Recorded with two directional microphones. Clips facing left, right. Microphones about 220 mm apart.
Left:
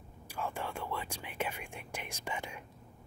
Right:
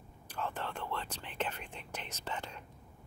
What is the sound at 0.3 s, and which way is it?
Speech, 10° left (ahead or behind).